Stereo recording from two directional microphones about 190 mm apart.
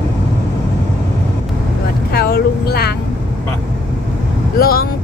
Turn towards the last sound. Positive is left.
turn(degrees=50)  # may be behind; listen again after turning